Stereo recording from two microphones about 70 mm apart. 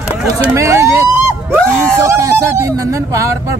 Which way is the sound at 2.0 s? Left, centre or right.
Right.